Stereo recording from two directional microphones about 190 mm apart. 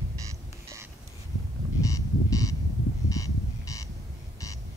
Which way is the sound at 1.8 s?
15° left (ahead or behind).